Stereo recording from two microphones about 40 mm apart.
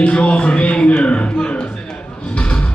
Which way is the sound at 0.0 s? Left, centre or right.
Left.